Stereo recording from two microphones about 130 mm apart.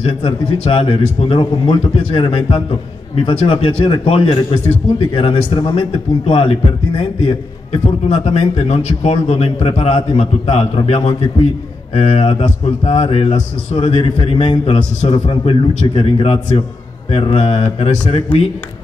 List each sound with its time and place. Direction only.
0.0 s speech: 45° left (ahead or behind)